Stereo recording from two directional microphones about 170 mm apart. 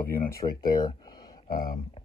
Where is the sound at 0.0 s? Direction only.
15° left (ahead or behind).